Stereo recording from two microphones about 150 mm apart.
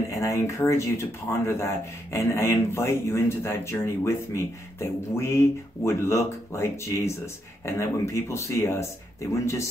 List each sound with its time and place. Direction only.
0.1 s speech: 20° left (ahead or behind)